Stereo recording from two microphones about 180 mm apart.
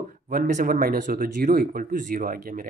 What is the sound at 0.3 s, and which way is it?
Speech, 45° right (ahead or behind).